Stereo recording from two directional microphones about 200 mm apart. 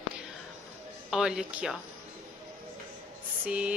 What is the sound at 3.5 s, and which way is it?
Speech, 5° right (ahead or behind).